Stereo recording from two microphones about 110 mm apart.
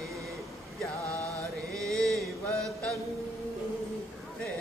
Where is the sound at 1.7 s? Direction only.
5° left (ahead or behind).